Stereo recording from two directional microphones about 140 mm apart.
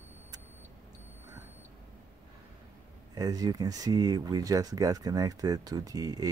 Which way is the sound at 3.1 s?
25° right (ahead or behind).